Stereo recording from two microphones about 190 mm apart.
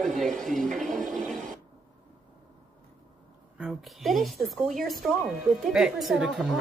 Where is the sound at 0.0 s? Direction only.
Centre (ahead or behind).